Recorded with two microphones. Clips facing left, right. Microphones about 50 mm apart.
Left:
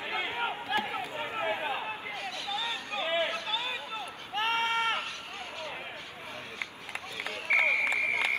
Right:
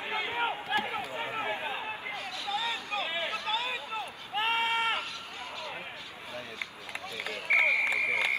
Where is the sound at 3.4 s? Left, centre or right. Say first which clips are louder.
Right 2 dB; right.